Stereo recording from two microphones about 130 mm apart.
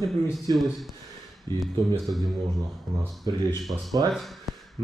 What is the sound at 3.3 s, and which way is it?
Speech, 35° right (ahead or behind).